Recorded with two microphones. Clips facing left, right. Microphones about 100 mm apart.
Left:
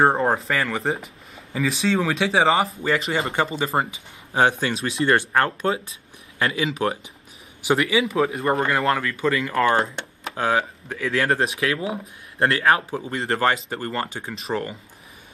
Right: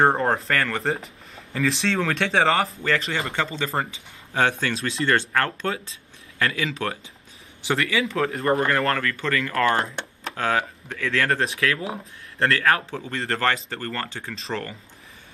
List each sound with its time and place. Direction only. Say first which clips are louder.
0.0 s speech: left 1 dB; 5° left (ahead or behind)
8.2 s speech: left 1 dB; 5° left (ahead or behind)